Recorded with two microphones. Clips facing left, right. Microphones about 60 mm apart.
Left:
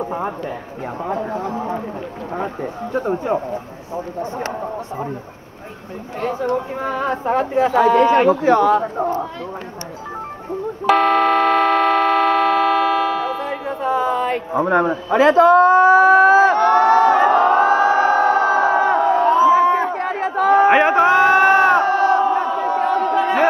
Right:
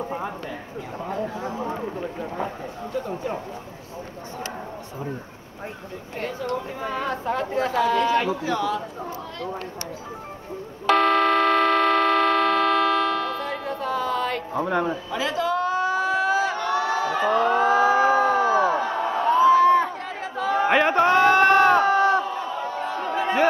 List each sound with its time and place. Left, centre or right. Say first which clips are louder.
0.0 s a sound: left 6 dB; left
1.3 s a sound: left 7 dB; left
2.3 s speech: left 5 dB; left
2.9 s speech: left 8 dB; left
6.8 s speech: left 6 dB; left
10.9 s vehicle: left 4 dB; centre; by 15.0 s left
15.0 s a sound: left 13 dB; left
17.3 s crowd: left 6 dB; left
19.3 s crowd: right 1 dB; centre
19.9 s chatter: left 10 dB; left
20.7 s crowd: left 5 dB; centre
22.4 s crowd: left 9 dB; left